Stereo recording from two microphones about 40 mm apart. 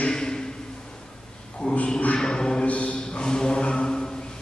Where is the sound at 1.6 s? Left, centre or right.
Left.